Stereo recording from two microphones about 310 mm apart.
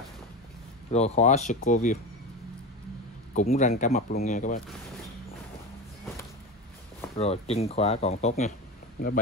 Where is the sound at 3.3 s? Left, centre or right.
Left.